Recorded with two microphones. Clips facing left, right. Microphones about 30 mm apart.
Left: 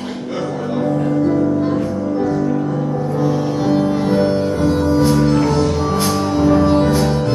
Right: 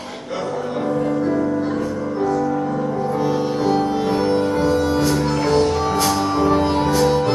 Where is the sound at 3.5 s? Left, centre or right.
Right.